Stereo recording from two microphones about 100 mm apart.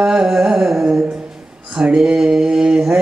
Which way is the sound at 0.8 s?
25° right (ahead or behind).